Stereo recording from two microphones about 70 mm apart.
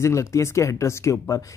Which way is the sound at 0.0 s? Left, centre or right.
Left.